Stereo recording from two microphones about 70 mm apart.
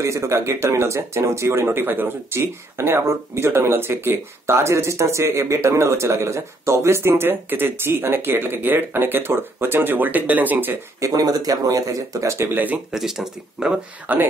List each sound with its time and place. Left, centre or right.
0.0 s speech: right
11.0 s speech: right
12.4 s speech: right
12.9 s speech: centre
14.1 s speech: right